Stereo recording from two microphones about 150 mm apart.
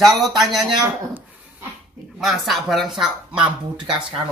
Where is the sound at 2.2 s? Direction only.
Centre (ahead or behind).